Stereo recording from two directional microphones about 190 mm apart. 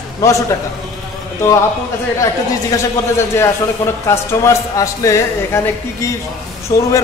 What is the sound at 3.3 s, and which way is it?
Speech, 15° left (ahead or behind).